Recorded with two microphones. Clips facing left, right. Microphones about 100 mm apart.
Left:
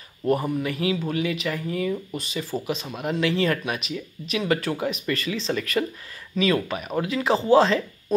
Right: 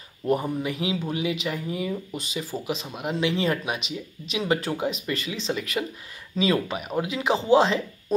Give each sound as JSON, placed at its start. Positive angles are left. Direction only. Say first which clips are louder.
{"t": 0.3, "sound": "speech", "louder": "left 1 dB", "side_deg": -20}
{"t": 6.3, "sound": "speech", "louder": "left 1 dB", "side_deg": -25}